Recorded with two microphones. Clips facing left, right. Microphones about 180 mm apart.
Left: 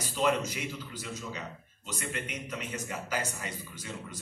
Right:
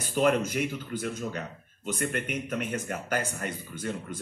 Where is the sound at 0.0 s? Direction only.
55° right (ahead or behind).